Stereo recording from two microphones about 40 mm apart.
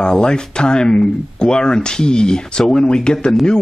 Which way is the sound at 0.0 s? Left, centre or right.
Centre.